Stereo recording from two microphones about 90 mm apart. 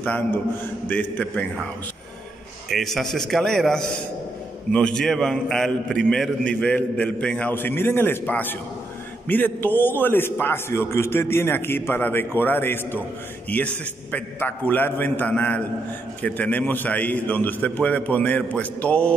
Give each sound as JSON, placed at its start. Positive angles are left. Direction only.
{"t": 0.0, "sound": "a man's voice", "side_deg": 15}
{"t": 2.7, "sound": "a man's voice", "side_deg": 5}
{"t": 7.5, "sound": "a man's voice", "side_deg": 25}